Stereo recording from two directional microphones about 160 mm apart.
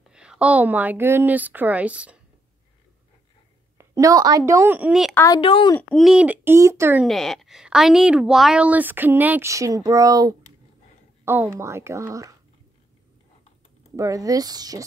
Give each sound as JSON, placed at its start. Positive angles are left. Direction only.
{"t": 0.1, "sound": "a woman's voice", "side_deg": -5}
{"t": 3.7, "sound": "a woman's voice", "side_deg": -20}
{"t": 5.1, "sound": "a woman's voice", "side_deg": 20}
{"t": 5.4, "sound": "a woman's voice", "side_deg": 30}
{"t": 5.8, "sound": "a woman's voice", "side_deg": 5}
{"t": 7.1, "sound": "a woman's voice", "side_deg": 0}
{"t": 13.9, "sound": "speech", "side_deg": -20}